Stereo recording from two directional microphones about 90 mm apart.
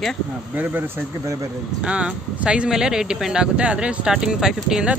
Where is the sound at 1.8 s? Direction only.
10° right (ahead or behind).